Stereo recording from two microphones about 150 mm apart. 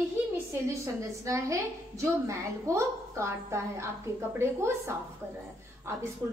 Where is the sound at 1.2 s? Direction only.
20° right (ahead or behind).